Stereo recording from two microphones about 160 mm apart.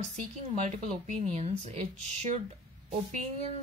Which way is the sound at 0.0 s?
45° right (ahead or behind).